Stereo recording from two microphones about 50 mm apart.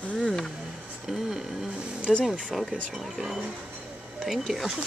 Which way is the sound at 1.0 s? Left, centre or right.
Centre.